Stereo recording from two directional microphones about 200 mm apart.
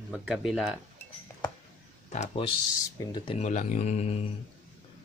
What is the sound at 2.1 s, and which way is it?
Speech, 30° left (ahead or behind).